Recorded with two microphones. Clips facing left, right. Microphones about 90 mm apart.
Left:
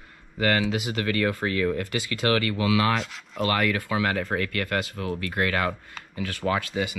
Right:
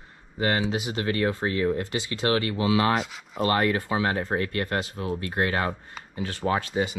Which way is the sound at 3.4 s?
30° right (ahead or behind).